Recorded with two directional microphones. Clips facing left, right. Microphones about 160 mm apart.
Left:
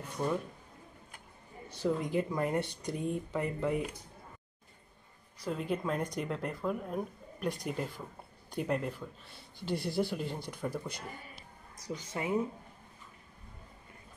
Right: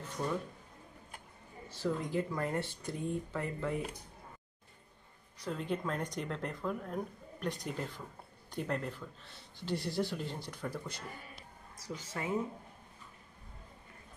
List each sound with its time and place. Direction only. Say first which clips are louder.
1.8 s speech: left 3 dB; 20° left (ahead or behind)
5.4 s speech: left 2 dB; 10° left (ahead or behind)